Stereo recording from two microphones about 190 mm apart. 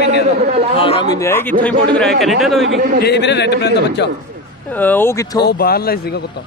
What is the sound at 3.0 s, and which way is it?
Speech, 60° left (ahead or behind).